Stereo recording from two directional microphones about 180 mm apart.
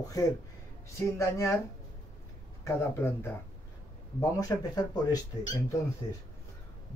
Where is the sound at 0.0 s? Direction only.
20° left (ahead or behind).